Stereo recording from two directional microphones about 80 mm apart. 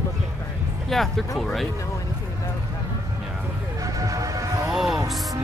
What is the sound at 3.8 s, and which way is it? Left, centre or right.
Music, right.